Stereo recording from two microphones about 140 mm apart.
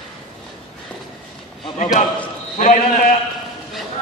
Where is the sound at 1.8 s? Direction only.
55° left (ahead or behind).